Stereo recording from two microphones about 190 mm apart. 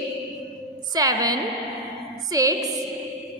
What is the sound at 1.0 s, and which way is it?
A woman's voice, 20° right (ahead or behind).